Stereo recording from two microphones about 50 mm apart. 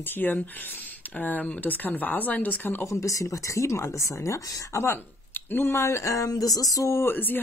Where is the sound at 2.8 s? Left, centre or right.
Left.